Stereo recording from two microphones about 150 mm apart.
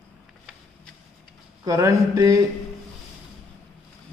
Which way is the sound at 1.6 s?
20° right (ahead or behind).